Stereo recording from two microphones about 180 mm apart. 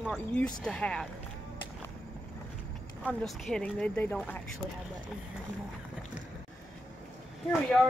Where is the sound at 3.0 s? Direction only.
5° left (ahead or behind).